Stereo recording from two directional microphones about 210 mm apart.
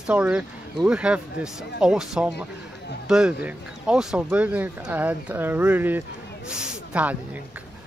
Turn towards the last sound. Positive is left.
turn(degrees=-5)  # may be behind; listen again after turning